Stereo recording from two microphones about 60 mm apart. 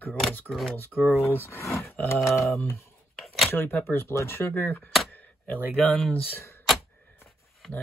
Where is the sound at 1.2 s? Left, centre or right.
Left.